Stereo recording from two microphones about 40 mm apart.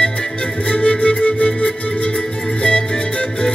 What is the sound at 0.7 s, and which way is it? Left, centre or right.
Music, left.